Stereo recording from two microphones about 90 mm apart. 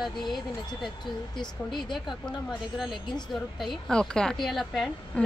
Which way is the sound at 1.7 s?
Centre (ahead or behind).